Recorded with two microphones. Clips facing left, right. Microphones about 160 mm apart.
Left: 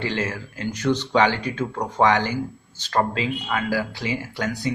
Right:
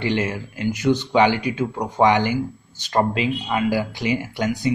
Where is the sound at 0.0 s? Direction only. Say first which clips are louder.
Right 4 dB; 15° right (ahead or behind).